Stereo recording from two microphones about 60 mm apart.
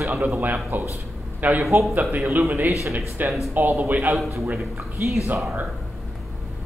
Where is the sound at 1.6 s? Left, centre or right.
Right.